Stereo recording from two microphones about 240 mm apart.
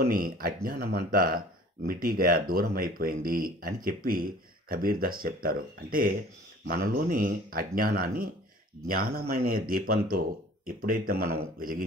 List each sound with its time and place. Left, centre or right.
0.1 s speech: right